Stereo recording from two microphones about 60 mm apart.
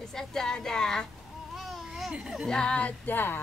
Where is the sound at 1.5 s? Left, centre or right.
Centre.